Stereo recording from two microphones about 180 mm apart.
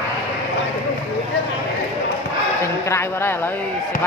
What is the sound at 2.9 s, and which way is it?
Speech, 15° left (ahead or behind).